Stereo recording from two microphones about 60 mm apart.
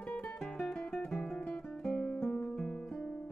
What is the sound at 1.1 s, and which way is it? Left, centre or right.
Guitar, centre.